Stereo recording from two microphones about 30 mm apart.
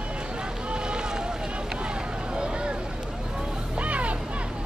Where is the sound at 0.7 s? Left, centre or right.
Right.